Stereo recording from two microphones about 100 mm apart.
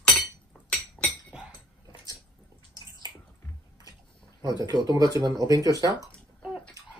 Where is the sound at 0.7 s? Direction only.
15° left (ahead or behind).